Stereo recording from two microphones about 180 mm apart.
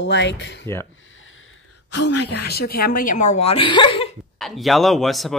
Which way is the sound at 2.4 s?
60° left (ahead or behind).